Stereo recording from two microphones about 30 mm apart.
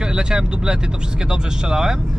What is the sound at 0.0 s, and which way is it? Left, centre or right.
Speech, right.